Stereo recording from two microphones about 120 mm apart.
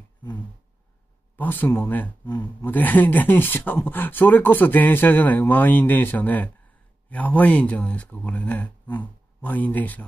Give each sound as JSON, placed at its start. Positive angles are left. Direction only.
{"t": 1.3, "sound": "speech", "side_deg": 15}